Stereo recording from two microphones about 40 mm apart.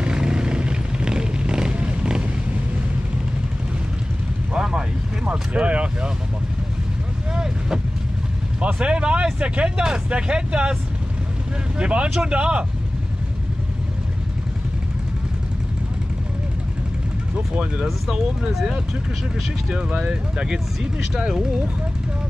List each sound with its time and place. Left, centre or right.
0.0 s vehicle: right
4.6 s vehicle: centre
5.2 s a sound: right
7.3 s vehicle: centre
8.7 s speech: right
11.8 s speech: right
18.1 s speech: right
20.0 s speech: centre